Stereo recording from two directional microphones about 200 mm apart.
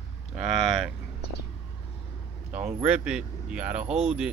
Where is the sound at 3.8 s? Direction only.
30° right (ahead or behind).